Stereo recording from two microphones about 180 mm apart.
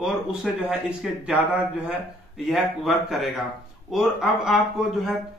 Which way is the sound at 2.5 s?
Centre (ahead or behind).